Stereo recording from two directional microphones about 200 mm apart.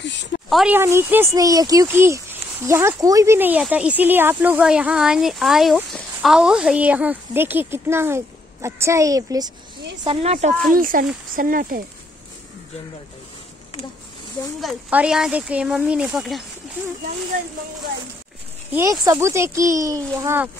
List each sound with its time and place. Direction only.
0.0 s a sound: 60° left (ahead or behind)
0.5 s a woman's voice: centre (ahead or behind)
0.7 s speech: 10° right (ahead or behind)
10.0 s a woman's voice: 35° right (ahead or behind)
10.7 s speech: 45° right (ahead or behind)
14.6 s speech: 5° right (ahead or behind)
18.7 s speech: 15° right (ahead or behind)